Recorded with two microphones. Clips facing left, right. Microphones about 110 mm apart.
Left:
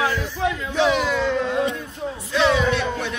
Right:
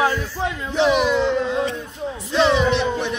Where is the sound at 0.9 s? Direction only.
20° right (ahead or behind).